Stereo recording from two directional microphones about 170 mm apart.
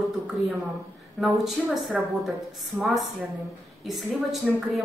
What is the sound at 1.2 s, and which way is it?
A woman's voice, centre (ahead or behind).